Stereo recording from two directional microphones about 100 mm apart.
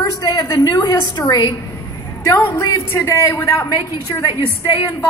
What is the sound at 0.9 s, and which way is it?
Speech, 25° left (ahead or behind).